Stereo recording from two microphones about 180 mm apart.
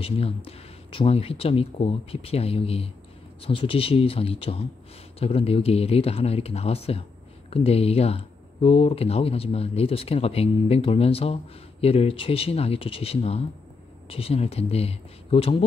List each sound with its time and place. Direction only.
0.0 s speech: 30° left (ahead or behind)